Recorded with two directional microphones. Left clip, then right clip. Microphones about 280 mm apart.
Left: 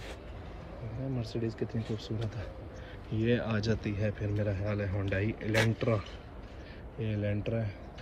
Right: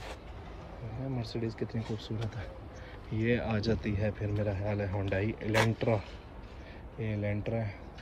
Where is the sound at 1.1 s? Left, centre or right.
Right.